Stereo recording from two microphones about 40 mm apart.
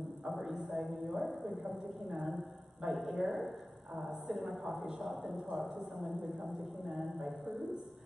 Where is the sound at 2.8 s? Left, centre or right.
Centre.